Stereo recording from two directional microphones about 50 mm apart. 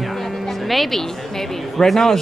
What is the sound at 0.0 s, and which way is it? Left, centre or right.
A woman's voice, centre.